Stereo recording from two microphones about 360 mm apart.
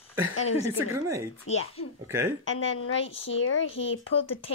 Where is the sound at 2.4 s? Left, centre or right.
Left.